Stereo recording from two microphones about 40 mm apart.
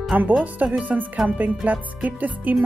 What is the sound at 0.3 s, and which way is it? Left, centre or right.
Speech, right.